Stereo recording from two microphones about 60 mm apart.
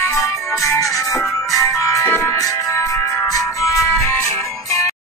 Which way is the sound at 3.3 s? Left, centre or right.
Left.